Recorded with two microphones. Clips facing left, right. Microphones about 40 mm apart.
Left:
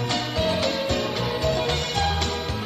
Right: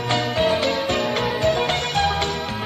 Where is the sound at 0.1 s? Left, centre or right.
Right.